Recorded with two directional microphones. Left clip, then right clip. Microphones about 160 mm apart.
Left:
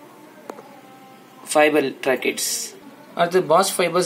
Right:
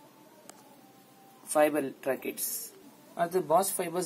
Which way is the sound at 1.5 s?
10° right (ahead or behind).